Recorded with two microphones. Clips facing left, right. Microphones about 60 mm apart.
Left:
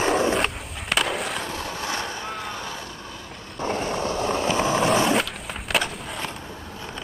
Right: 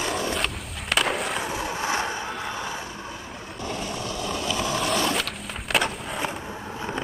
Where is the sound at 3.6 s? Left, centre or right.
Left.